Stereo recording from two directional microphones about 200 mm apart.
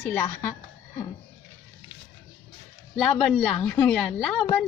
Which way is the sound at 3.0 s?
Centre (ahead or behind).